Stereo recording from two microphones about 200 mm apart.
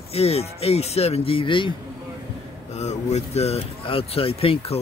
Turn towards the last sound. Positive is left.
turn(degrees=30)  # may be behind; listen again after turning